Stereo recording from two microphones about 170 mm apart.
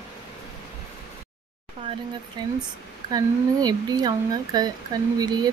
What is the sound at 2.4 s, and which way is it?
Speech, 25° right (ahead or behind).